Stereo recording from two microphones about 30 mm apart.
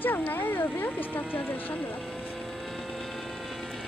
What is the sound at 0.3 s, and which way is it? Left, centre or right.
Cat, left.